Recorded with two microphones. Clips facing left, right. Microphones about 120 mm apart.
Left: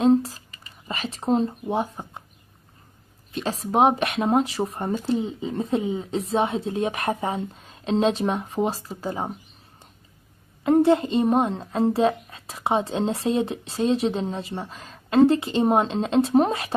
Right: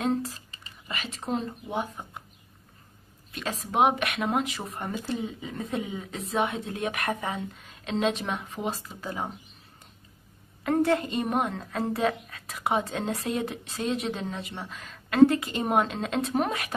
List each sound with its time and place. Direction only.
0.0 s speech: 30° left (ahead or behind)
3.3 s a child's voice: 30° left (ahead or behind)
10.6 s a child's voice: 25° left (ahead or behind)